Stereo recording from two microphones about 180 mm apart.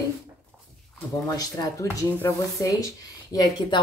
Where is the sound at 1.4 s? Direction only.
20° left (ahead or behind).